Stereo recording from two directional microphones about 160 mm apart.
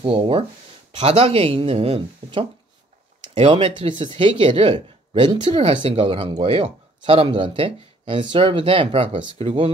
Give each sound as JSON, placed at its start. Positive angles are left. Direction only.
{"t": 0.0, "sound": "speech", "side_deg": -35}